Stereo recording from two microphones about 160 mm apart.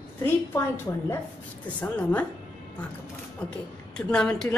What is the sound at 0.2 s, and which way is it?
Speech, 15° left (ahead or behind).